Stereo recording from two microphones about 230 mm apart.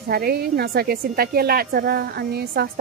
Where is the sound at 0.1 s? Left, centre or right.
Right.